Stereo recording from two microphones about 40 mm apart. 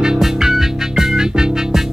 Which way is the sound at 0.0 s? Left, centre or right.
Centre.